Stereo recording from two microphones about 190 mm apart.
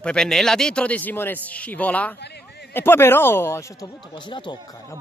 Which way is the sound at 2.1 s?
60° left (ahead or behind).